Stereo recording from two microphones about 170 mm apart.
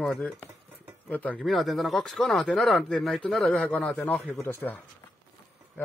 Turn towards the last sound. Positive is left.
turn(degrees=10)  # may be behind; listen again after turning